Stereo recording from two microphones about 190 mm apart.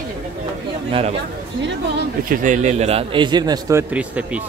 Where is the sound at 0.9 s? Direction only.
30° right (ahead or behind).